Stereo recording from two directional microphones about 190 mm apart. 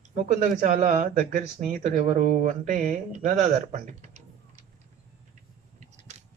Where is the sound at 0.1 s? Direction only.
40° right (ahead or behind).